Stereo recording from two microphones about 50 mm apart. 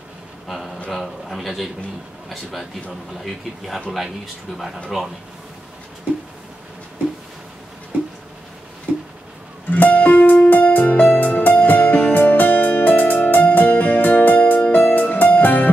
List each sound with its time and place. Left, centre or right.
0.5 s a sound: centre
0.8 s a man's voice: centre
9.7 s music: left